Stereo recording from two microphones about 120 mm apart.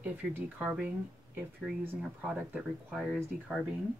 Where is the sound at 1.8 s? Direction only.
10° right (ahead or behind).